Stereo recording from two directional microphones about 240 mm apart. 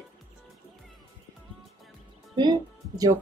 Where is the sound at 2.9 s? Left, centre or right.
Centre.